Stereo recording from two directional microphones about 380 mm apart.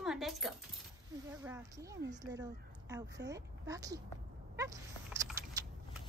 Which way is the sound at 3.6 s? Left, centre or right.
Centre.